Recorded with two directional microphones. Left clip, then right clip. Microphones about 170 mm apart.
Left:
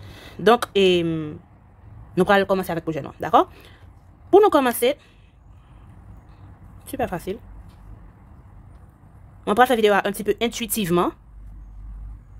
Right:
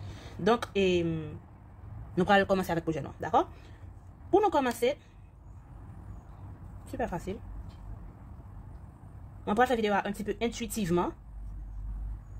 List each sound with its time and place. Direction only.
0.1 s speech: 40° left (ahead or behind)
2.1 s speech: 30° left (ahead or behind)
6.9 s speech: 40° left (ahead or behind)
9.4 s speech: 45° left (ahead or behind)